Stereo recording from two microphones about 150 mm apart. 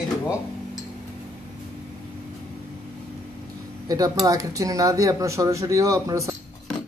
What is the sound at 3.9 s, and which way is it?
Speech, 25° right (ahead or behind).